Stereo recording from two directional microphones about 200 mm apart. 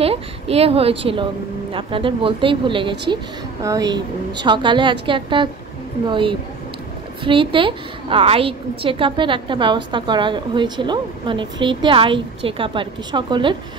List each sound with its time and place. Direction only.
0.0 s a woman's voice: 30° right (ahead or behind)